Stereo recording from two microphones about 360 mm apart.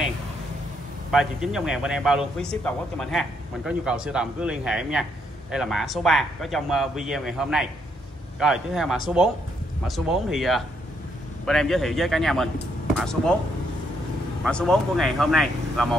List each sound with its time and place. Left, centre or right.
1.1 s speech: centre
14.4 s speech: centre